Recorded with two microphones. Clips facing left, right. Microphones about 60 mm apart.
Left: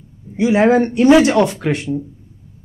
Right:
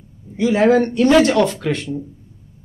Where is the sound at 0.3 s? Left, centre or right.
Centre.